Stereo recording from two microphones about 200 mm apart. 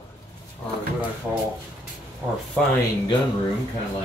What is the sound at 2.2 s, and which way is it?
Speech, 15° right (ahead or behind).